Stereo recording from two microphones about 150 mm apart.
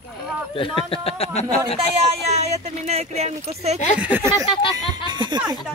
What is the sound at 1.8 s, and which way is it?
Speech, 45° right (ahead or behind).